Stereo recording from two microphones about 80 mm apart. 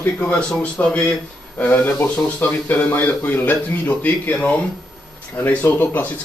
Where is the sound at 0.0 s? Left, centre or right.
Left.